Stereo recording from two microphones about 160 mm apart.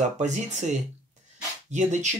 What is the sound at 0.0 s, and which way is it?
Speech, 45° right (ahead or behind).